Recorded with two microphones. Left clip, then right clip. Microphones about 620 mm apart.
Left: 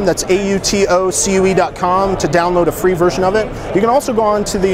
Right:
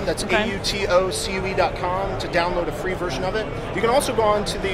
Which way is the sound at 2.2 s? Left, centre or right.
Left.